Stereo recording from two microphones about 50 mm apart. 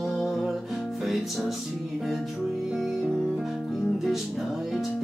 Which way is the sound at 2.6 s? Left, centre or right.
Centre.